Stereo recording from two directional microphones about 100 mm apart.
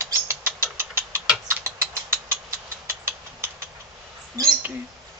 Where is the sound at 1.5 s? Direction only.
25° right (ahead or behind).